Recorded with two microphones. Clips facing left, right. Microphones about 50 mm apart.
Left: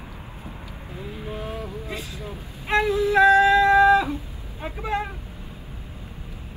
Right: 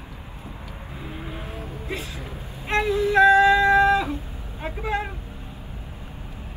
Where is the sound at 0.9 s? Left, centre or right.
Centre.